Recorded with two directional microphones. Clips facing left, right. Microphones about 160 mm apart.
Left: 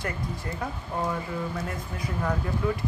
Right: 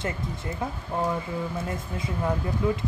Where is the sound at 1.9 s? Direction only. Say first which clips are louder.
Right 1 dB; 25° right (ahead or behind).